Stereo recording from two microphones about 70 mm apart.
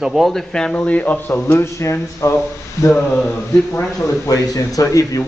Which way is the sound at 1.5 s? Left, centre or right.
Left.